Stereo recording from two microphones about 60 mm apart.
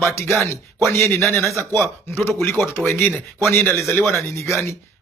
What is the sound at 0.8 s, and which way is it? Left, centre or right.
Speech, left.